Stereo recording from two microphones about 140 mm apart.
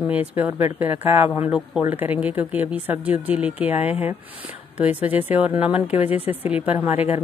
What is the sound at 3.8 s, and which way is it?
Speech, 45° left (ahead or behind).